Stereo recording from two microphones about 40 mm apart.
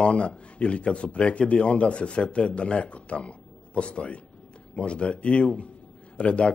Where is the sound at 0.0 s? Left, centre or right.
Left.